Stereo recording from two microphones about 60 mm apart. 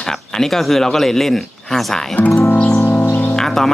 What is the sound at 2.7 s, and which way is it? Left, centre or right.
Music, left.